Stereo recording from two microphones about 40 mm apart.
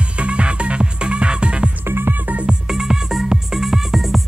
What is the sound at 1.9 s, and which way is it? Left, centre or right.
Music, right.